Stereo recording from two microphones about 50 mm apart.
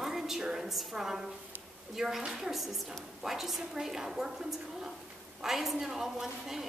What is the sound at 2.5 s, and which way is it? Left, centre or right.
A woman's voice, centre.